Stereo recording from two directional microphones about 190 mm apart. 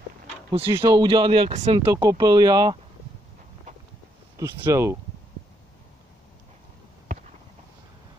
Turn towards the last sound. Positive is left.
turn(degrees=-45)  # may be behind; listen again after turning